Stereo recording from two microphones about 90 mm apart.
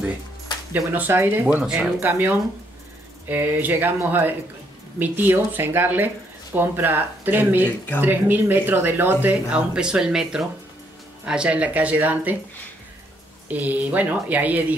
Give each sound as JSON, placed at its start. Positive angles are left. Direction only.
{"t": 0.9, "sound": "speech", "side_deg": -20}
{"t": 13.5, "sound": "speech", "side_deg": -15}